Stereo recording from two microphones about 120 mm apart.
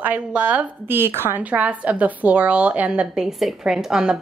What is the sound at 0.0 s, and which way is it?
A woman's voice, 15° right (ahead or behind).